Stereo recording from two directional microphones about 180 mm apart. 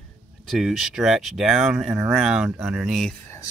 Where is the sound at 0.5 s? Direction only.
Centre (ahead or behind).